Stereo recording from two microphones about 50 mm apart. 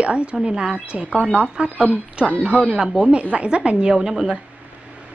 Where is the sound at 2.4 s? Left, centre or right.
Right.